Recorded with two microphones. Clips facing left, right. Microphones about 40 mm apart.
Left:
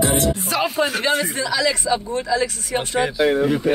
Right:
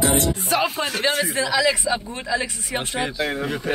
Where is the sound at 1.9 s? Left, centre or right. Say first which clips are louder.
Left 4 dB; right.